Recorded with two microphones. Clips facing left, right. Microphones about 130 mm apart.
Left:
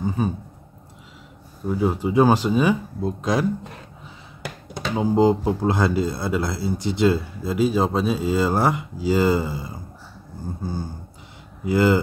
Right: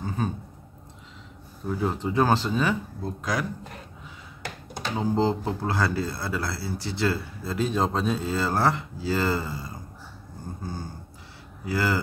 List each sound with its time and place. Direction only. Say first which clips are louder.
0.2 s a man's voice: left 4 dB; 10° left (ahead or behind)
1.7 s a man's voice: left 5 dB; 5° left (ahead or behind); by 3.4 s 25° left (ahead or behind)
4.9 s a man's voice: left 6 dB; 10° left (ahead or behind)